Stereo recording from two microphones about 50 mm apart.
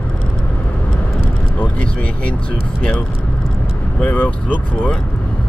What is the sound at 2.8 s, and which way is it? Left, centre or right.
Speech, left.